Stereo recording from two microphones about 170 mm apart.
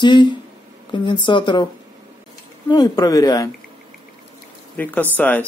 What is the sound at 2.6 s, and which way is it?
Speech, 25° left (ahead or behind).